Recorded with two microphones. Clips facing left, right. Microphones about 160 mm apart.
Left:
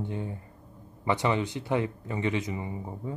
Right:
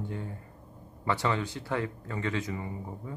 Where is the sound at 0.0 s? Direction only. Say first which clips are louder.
Left 3 dB; 20° left (ahead or behind).